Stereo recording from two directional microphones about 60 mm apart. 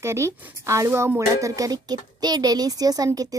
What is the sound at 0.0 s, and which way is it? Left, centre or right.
A woman's voice, right.